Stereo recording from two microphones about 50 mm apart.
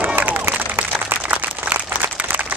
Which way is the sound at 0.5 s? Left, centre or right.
Right.